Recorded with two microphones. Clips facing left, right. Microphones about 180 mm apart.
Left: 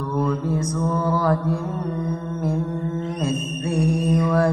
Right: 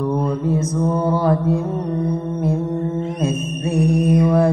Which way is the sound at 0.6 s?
25° right (ahead or behind).